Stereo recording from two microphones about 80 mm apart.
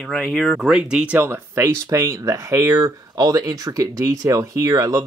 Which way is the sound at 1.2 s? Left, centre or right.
Right.